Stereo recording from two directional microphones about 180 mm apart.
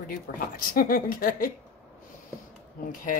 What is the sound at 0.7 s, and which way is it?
Speech, 50° left (ahead or behind).